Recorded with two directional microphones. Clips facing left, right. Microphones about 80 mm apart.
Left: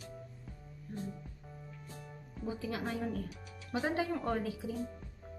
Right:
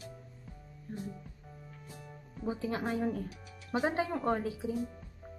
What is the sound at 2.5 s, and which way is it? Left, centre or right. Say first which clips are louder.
A woman's voice: right 4 dB; right.